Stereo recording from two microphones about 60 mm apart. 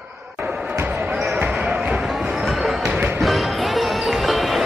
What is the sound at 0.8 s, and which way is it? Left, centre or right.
Basketball bounce, right.